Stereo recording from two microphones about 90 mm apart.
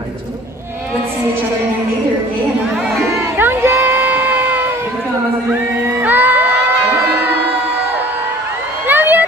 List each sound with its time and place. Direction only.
3.0 s a sound: 25° right (ahead or behind)
6.0 s crowd: 20° right (ahead or behind)
8.8 s vehicle: 20° right (ahead or behind)